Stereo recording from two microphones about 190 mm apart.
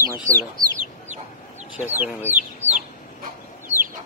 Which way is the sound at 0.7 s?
40° right (ahead or behind).